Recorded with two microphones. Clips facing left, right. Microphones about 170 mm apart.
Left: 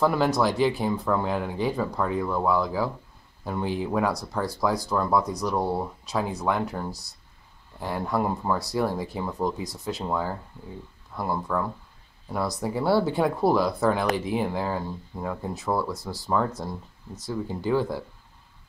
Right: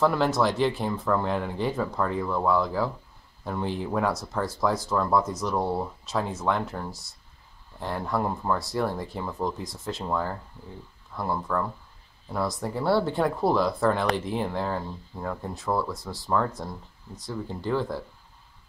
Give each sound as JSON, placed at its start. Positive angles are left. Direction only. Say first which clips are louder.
{"t": 0.0, "sound": "speech", "louder": "left 1 dB", "side_deg": 0}